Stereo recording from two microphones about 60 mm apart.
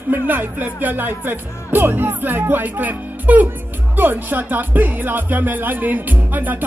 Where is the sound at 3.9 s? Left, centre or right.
Right.